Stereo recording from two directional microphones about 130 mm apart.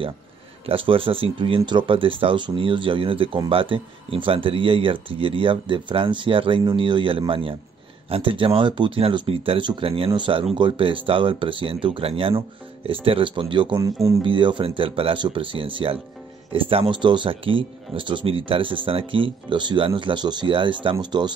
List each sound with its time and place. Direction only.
0.7 s speech: 45° right (ahead or behind)